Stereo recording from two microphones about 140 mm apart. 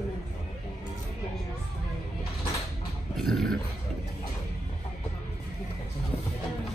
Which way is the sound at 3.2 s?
5° left (ahead or behind).